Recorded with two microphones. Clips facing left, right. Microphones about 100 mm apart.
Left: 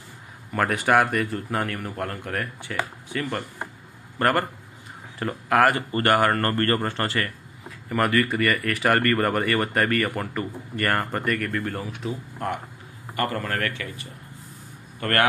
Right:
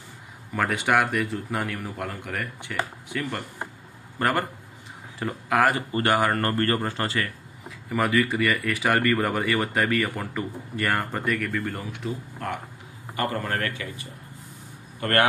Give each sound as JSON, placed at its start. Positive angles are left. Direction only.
{"t": 0.6, "sound": "speech", "side_deg": 0}
{"t": 5.8, "sound": "speech", "side_deg": -15}
{"t": 13.1, "sound": "a man's voice", "side_deg": -20}